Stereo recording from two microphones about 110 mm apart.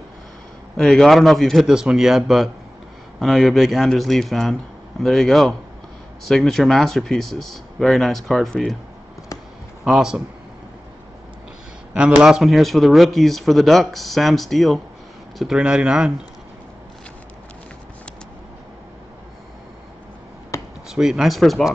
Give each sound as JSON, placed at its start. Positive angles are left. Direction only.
{"t": 0.7, "sound": "speech", "side_deg": 5}
{"t": 9.8, "sound": "speech", "side_deg": -5}
{"t": 11.9, "sound": "speech", "side_deg": -10}
{"t": 20.5, "sound": "a sound", "side_deg": 30}
{"t": 20.9, "sound": "speech", "side_deg": -5}